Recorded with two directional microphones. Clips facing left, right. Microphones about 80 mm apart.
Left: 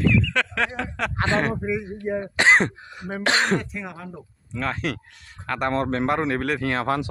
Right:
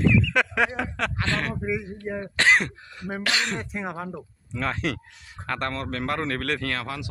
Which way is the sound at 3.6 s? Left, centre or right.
Right.